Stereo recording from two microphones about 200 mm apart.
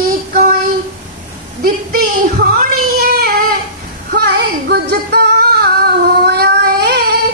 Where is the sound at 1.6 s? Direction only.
45° right (ahead or behind).